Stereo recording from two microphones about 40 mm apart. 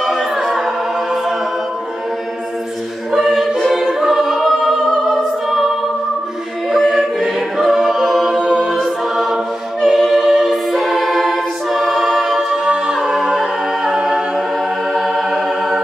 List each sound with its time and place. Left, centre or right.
0.0 s music: centre
3.1 s music: centre
4.0 s choir: centre
4.3 s music: centre
6.7 s music: centre
7.0 s choir: centre
8.3 s a capella: right
9.0 s choir: centre
12.0 s a capella: centre
12.4 s a capella: centre